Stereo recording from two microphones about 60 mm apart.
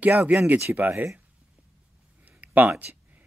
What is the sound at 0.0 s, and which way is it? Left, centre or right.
Speech, right.